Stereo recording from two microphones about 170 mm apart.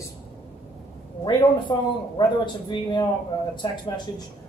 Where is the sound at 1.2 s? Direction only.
25° left (ahead or behind).